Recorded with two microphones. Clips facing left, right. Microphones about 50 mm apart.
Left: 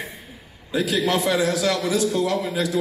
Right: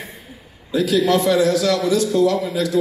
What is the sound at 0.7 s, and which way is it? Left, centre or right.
A man's voice, centre.